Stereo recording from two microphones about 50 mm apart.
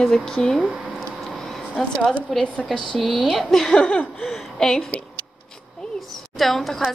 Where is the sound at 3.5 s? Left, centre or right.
Centre.